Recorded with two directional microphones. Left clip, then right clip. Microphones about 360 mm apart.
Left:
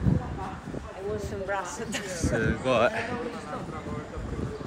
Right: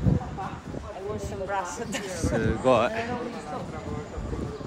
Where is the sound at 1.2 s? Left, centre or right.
Right.